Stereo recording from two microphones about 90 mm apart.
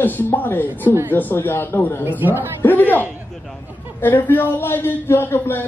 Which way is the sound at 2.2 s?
25° right (ahead or behind).